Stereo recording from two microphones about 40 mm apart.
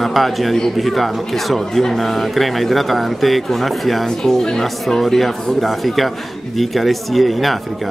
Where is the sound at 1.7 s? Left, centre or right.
Centre.